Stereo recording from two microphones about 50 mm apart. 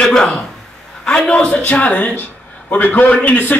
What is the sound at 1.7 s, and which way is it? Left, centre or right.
A man's voice, left.